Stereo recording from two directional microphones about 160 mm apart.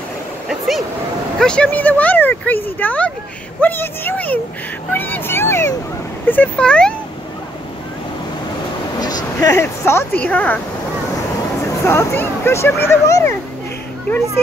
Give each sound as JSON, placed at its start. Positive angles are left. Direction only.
{"t": 0.5, "sound": "speech", "side_deg": 0}
{"t": 9.0, "sound": "speech", "side_deg": 25}
{"t": 11.8, "sound": "speech", "side_deg": 15}